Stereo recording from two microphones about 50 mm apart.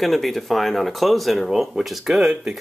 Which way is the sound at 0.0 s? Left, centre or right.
Centre.